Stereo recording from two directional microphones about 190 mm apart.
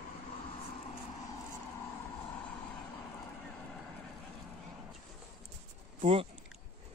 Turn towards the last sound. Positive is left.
turn(degrees=-30)  # may be behind; listen again after turning